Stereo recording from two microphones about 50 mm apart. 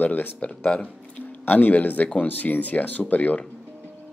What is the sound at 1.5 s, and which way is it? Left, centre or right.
Speech, left.